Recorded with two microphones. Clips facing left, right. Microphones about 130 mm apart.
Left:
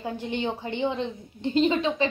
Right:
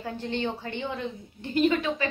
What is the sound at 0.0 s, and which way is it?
A woman's voice, 15° left (ahead or behind).